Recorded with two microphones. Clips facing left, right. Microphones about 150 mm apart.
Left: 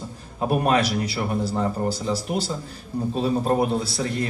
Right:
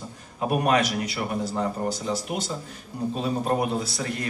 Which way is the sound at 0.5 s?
30° left (ahead or behind).